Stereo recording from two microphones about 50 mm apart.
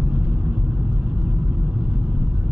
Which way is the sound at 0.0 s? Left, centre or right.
Right.